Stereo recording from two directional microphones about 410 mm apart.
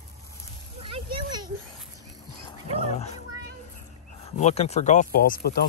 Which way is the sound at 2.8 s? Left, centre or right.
Centre.